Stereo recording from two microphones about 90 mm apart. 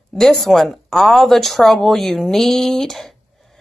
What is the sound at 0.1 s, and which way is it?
Speech, 5° left (ahead or behind).